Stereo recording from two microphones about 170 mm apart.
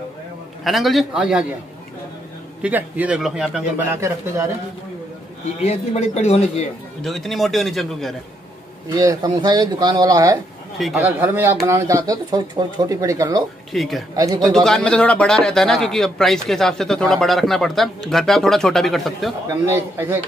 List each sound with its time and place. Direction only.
0.7 s speech: centre (ahead or behind)
2.6 s speech: 10° right (ahead or behind)
3.9 s speech: 15° right (ahead or behind)
5.6 s speech: 40° left (ahead or behind)
7.0 s speech: centre (ahead or behind)
8.9 s speech: 20° right (ahead or behind)
10.8 s speech: 5° right (ahead or behind)
13.7 s speech: centre (ahead or behind)
14.1 s speech: 20° right (ahead or behind)
14.4 s speech: 5° left (ahead or behind)
19.6 s speech: 15° right (ahead or behind)